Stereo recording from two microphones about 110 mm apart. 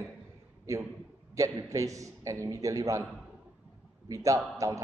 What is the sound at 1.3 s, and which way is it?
A man's voice, 30° right (ahead or behind).